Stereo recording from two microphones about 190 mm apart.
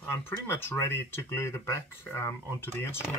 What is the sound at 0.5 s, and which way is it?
Speech, 10° left (ahead or behind).